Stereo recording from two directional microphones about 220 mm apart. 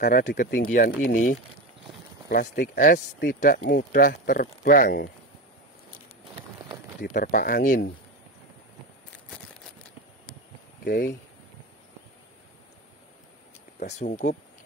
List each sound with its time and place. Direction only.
0.0 s speech: 45° left (ahead or behind)
7.2 s speech: 40° left (ahead or behind)
13.9 s speech: 35° left (ahead or behind)